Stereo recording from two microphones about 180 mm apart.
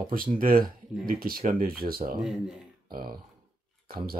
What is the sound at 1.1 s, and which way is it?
Speech, 55° right (ahead or behind).